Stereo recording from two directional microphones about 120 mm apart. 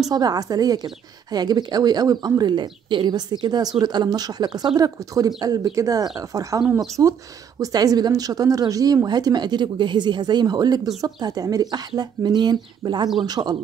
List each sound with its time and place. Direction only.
0.1 s a woman's voice: 30° right (ahead or behind)